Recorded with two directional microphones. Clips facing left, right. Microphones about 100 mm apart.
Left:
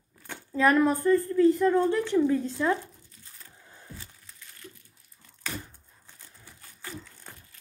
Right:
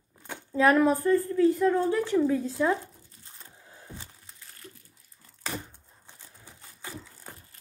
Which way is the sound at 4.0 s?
35° right (ahead or behind).